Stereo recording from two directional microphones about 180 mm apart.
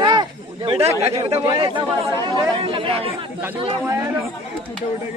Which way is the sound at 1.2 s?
30° right (ahead or behind).